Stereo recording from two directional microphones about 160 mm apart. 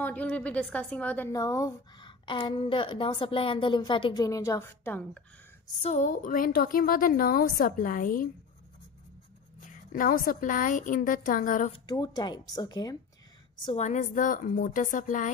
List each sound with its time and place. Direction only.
0.0 s a woman's voice: 10° left (ahead or behind)
1.3 s a woman's voice: 20° left (ahead or behind)
5.8 s a woman's voice: 45° left (ahead or behind)
9.6 s a woman's voice: 55° left (ahead or behind)
11.7 s a woman's voice: 25° left (ahead or behind)
13.7 s a woman's voice: 50° left (ahead or behind)